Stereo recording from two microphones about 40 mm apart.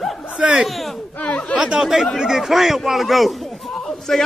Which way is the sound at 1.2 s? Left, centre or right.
Left.